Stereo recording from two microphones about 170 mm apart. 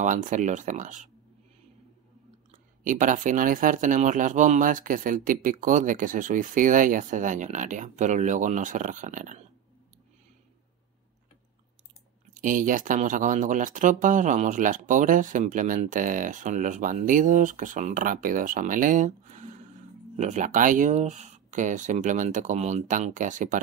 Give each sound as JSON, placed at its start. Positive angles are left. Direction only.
{"t": 0.0, "sound": "speech", "side_deg": -45}
{"t": 2.5, "sound": "speech", "side_deg": -50}
{"t": 12.4, "sound": "speech", "side_deg": -50}